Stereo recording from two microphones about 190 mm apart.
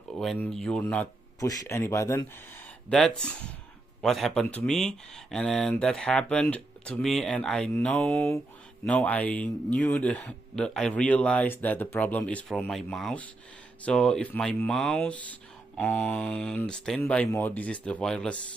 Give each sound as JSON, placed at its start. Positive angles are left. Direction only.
{"t": 0.1, "sound": "speech", "side_deg": 0}
{"t": 2.9, "sound": "speech", "side_deg": 5}